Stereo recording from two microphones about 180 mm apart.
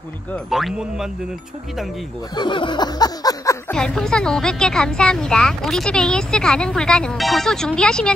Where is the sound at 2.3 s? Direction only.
25° left (ahead or behind).